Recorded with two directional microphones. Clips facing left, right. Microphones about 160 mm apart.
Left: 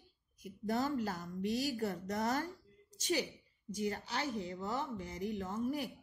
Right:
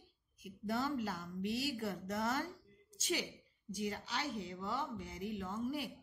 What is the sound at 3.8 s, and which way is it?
A woman's voice, 45° left (ahead or behind).